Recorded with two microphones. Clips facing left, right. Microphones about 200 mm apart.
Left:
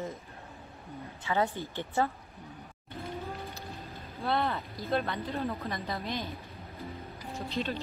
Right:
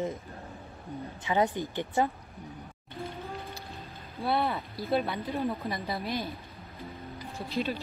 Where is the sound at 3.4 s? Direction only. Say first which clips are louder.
Even; centre (ahead or behind).